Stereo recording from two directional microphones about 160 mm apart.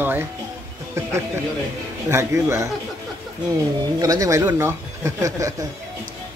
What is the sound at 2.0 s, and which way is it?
Speech, 15° right (ahead or behind).